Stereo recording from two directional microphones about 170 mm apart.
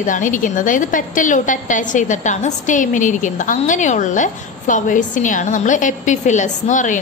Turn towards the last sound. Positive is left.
turn(degrees=45)  # may be behind; listen again after turning